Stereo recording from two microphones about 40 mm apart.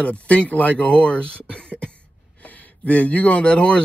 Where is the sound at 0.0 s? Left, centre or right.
Left.